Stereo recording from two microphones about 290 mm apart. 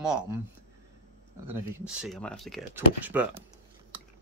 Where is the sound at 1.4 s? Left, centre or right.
Centre.